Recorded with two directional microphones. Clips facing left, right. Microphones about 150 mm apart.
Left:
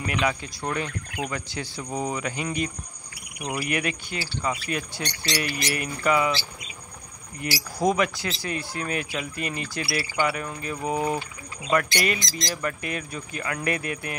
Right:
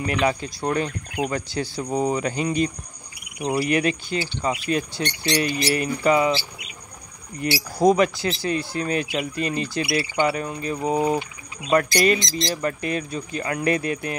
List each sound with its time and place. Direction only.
0.0 s speech: 35° right (ahead or behind)
7.4 s speech: 25° right (ahead or behind)
11.7 s speech: 35° right (ahead or behind)